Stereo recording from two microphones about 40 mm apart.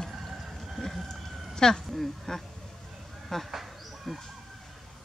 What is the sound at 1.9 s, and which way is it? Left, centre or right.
Speech, centre.